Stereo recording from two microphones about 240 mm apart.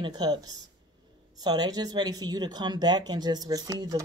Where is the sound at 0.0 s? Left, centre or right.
Centre.